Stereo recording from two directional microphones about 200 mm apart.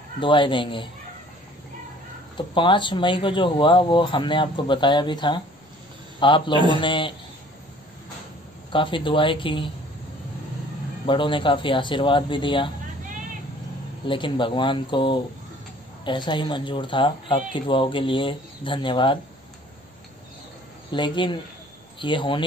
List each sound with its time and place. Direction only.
0.2 s speech: 25° left (ahead or behind)
2.3 s speech: 25° left (ahead or behind)
8.7 s speech: 25° left (ahead or behind)
11.1 s speech: 25° left (ahead or behind)
14.0 s speech: 25° left (ahead or behind)
20.9 s speech: 25° left (ahead or behind)